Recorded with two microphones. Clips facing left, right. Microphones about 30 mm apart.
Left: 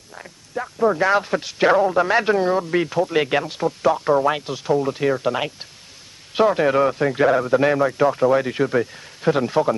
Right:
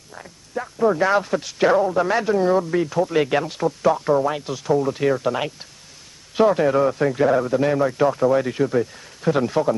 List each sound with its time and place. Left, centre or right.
0.2 s a sound: centre
1.2 s speech: centre
2.7 s speech: left
3.0 s speech: centre
4.9 s speech: centre; by 7.8 s left
7.8 s speech: centre